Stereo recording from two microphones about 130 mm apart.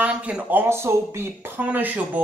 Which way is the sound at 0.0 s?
10° right (ahead or behind).